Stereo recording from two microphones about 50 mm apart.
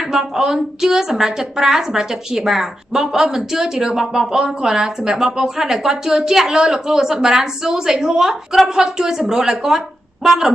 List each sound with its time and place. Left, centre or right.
0.1 s a woman's voice: centre